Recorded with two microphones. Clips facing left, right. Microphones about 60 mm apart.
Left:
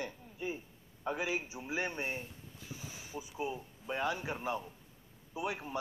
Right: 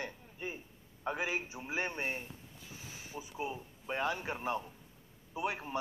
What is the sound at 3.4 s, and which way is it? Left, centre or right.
A man's voice, right.